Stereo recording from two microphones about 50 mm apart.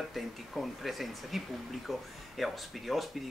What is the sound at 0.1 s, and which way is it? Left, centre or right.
A man's voice, centre.